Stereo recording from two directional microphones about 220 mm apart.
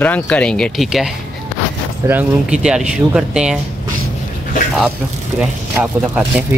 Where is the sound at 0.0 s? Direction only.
5° left (ahead or behind).